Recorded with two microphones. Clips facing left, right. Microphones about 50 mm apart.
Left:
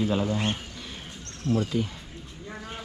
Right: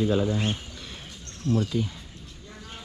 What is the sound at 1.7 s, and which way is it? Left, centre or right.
Speech, left.